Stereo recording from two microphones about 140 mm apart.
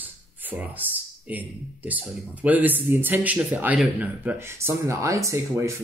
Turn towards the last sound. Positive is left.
turn(degrees=-20)  # may be behind; listen again after turning